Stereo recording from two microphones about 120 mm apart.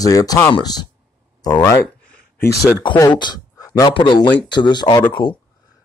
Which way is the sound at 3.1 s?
40° left (ahead or behind).